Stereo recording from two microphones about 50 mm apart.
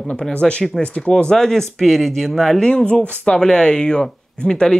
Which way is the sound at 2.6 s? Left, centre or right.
Centre.